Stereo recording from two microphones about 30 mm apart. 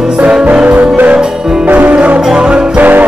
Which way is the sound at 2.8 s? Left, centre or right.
Right.